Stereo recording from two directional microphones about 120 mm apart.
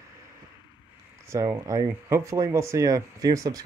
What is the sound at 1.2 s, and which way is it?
Speech, 25° right (ahead or behind).